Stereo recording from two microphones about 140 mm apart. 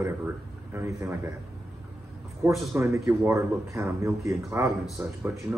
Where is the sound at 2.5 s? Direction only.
Centre (ahead or behind).